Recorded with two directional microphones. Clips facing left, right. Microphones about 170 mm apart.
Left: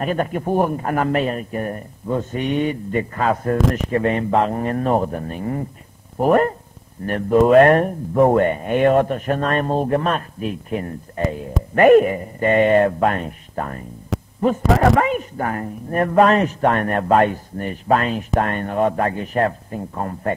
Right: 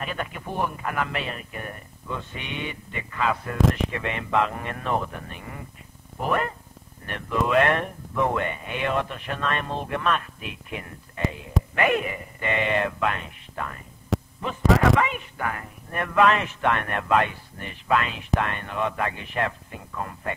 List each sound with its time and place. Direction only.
0.0 s a woman's voice: 45° left (ahead or behind)
14.1 s a sound: centre (ahead or behind)
14.8 s a woman's voice: 45° left (ahead or behind)